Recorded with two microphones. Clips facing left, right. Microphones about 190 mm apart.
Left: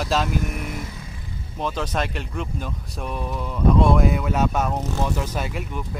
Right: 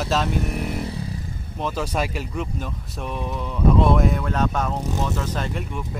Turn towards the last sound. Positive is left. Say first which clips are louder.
# even
turn(degrees=10)  # may be behind; listen again after turning